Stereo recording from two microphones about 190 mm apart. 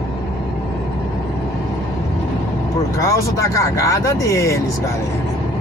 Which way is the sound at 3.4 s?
15° left (ahead or behind).